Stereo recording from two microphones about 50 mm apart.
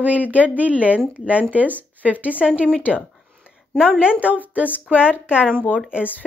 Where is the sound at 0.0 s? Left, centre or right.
Right.